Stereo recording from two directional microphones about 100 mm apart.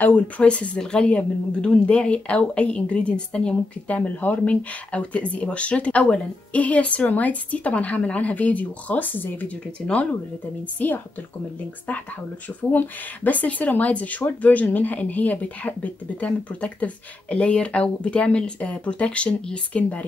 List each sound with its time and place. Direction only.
0.0 s speech: 15° left (ahead or behind)
12.7 s speech: 15° left (ahead or behind)